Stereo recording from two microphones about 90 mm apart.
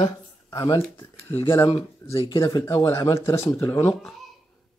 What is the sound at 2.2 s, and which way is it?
Speech, 50° left (ahead or behind).